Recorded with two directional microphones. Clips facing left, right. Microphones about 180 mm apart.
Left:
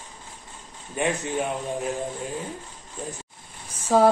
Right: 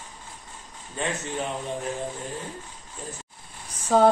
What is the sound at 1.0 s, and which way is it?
Speech, 15° left (ahead or behind).